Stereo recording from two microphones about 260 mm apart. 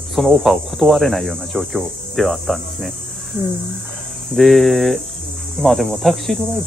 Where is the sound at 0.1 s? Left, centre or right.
Centre.